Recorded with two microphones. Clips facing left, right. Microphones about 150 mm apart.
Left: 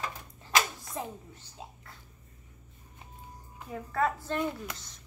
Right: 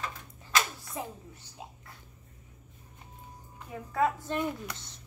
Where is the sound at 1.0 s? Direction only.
10° right (ahead or behind).